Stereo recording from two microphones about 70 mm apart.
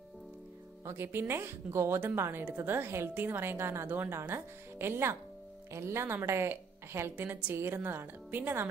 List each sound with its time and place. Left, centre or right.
0.8 s a woman's voice: right